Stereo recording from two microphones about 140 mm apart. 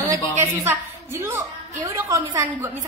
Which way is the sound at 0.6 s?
15° right (ahead or behind).